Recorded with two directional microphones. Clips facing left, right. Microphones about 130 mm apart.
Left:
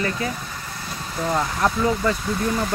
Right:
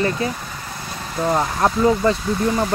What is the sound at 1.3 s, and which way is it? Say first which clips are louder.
Speech: right 3 dB; 30° right (ahead or behind).